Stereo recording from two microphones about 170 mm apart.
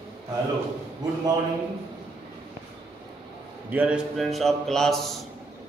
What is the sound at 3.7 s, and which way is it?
A man's voice, 10° right (ahead or behind).